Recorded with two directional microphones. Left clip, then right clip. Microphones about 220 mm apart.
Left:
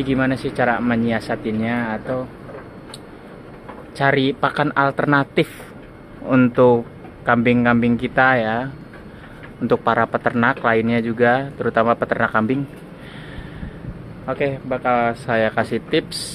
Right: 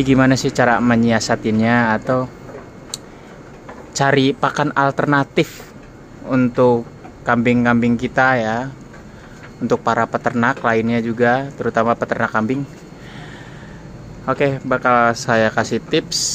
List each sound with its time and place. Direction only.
0.0 s speech: 20° right (ahead or behind)
3.9 s speech: 15° right (ahead or behind)
6.2 s speech: 5° left (ahead or behind)
9.7 s speech: 5° right (ahead or behind)
14.2 s speech: 20° right (ahead or behind)